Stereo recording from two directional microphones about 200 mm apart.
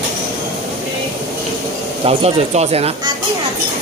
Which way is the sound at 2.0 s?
30° right (ahead or behind).